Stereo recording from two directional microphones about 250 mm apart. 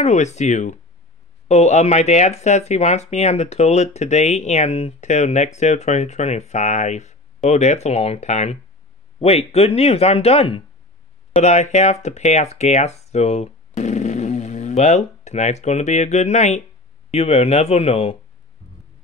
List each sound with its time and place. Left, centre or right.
0.0 s speech: left